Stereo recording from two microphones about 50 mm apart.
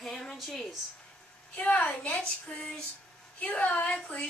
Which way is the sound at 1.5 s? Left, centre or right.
Left.